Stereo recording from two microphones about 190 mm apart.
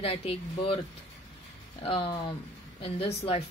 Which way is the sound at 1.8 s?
30° left (ahead or behind).